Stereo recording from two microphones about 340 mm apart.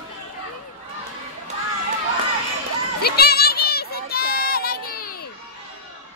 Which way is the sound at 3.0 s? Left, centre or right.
Left.